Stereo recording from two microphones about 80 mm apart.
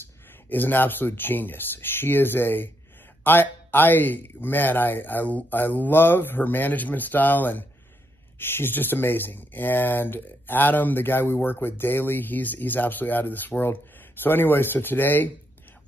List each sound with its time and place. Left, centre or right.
0.5 s speech: left